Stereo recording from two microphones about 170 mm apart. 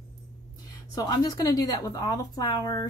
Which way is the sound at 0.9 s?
25° left (ahead or behind).